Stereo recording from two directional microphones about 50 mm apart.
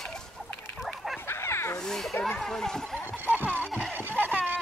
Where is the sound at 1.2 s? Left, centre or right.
Left.